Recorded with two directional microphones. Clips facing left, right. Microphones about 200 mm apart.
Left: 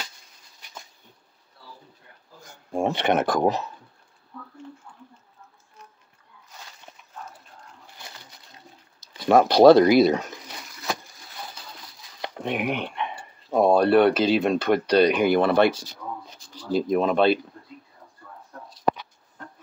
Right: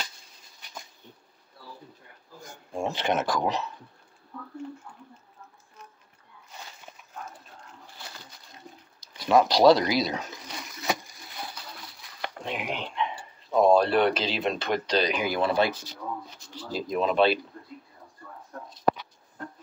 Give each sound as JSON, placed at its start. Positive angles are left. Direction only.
{"t": 2.7, "sound": "speech", "side_deg": 60}
{"t": 9.3, "sound": "speech", "side_deg": 55}
{"t": 12.4, "sound": "speech", "side_deg": 60}
{"t": 16.4, "sound": "a sound", "side_deg": 30}
{"t": 16.7, "sound": "speech", "side_deg": 50}